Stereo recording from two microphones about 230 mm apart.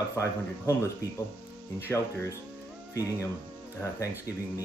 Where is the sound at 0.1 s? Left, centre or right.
Centre.